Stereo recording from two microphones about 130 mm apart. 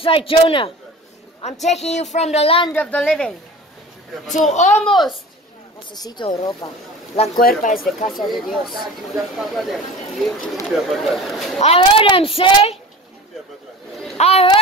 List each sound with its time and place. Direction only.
0.0 s speech: 45° left (ahead or behind)
1.4 s a woman's voice: 60° left (ahead or behind)
2.7 s speech: 10° left (ahead or behind)
4.3 s a woman's voice: 70° left (ahead or behind)
4.8 s speech: centre (ahead or behind)
5.9 s speech: 35° left (ahead or behind)
7.3 s speech: 90° left
8.1 s speech: centre (ahead or behind)
11.6 s speech: 45° left (ahead or behind)
14.1 s speech: 55° left (ahead or behind)